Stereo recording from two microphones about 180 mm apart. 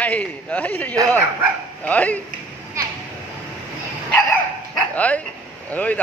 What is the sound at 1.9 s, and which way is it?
Speech, 10° left (ahead or behind).